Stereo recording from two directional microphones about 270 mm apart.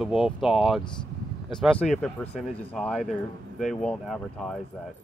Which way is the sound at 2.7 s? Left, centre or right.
Centre.